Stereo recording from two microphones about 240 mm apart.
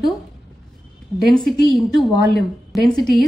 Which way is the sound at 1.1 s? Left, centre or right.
Centre.